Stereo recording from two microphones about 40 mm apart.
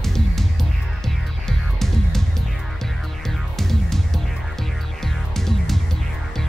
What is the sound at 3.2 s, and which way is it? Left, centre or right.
Music, centre.